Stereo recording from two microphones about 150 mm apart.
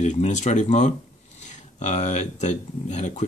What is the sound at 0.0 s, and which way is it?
Speech, 50° left (ahead or behind).